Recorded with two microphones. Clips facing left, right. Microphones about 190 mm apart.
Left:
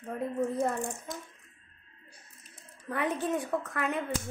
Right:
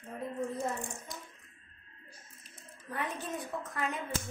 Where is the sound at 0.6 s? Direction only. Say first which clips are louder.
Left 6 dB; 60° left (ahead or behind).